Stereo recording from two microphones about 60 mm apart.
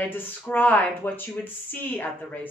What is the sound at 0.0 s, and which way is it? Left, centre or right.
Speech, left.